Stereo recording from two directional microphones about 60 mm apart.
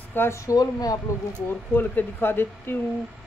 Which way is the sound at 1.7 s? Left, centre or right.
Left.